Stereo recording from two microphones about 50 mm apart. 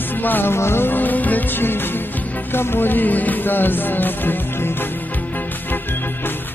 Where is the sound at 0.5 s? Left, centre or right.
Left.